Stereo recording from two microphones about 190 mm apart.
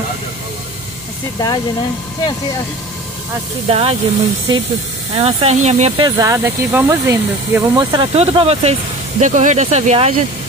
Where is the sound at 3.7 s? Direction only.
30° right (ahead or behind).